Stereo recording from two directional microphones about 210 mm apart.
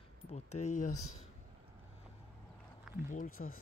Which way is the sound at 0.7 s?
35° left (ahead or behind).